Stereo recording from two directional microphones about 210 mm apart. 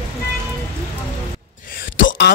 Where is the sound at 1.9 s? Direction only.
60° left (ahead or behind).